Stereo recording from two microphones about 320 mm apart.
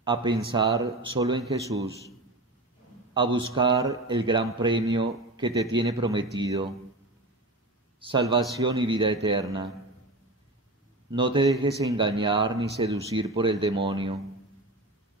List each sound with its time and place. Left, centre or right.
0.0 s speech: centre
1.9 s a man's voice: centre
3.2 s speech: centre
8.1 s speech: centre
11.1 s speech: centre